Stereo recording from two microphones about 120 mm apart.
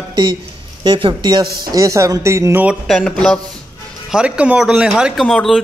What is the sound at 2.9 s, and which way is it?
Speech, 5° left (ahead or behind).